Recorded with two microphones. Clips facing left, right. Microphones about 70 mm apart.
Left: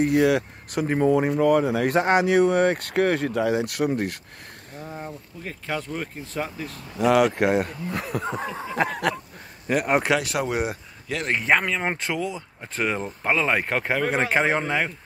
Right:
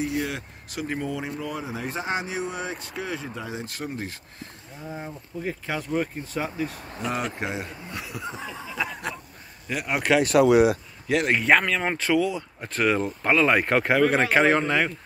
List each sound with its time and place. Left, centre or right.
0.0 s speech: left
0.8 s speech: left
4.9 s speech: centre
7.0 s speech: left
8.5 s a sound: left
9.7 s a sound: left
10.4 s speech: right
11.1 s speech: centre
11.3 s speech: centre